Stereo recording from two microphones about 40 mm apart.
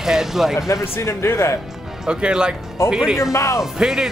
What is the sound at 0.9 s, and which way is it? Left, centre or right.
Speech, left.